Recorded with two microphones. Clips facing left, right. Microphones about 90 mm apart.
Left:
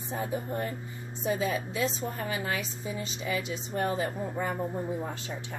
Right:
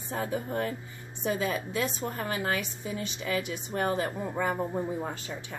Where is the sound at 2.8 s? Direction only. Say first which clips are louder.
Even; 65° right (ahead or behind).